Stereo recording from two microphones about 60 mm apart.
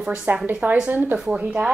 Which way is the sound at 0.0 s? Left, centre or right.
Centre.